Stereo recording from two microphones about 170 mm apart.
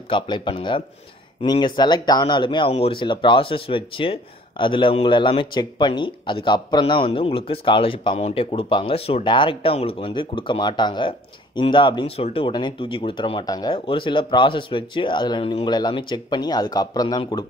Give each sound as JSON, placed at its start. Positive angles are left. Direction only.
{"t": 0.1, "sound": "speech", "side_deg": 30}